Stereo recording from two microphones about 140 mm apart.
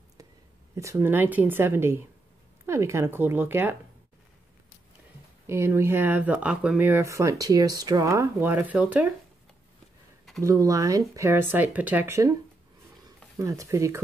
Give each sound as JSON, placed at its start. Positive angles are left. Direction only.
{"t": 0.7, "sound": "speech", "side_deg": -20}
{"t": 5.5, "sound": "speech", "side_deg": -20}
{"t": 10.4, "sound": "speech", "side_deg": -25}
{"t": 13.4, "sound": "speech", "side_deg": -25}